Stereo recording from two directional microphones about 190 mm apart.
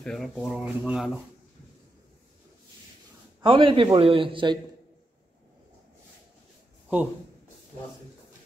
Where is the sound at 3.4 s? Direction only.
25° right (ahead or behind).